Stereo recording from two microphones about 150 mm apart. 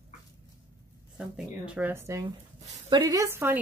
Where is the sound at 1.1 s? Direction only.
5° right (ahead or behind).